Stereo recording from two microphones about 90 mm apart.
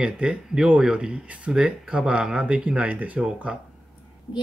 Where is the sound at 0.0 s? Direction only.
10° right (ahead or behind).